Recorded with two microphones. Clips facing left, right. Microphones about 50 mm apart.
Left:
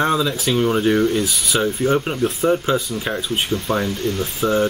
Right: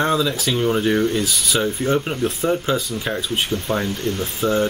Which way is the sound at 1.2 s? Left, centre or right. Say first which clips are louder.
Left 1 dB; centre.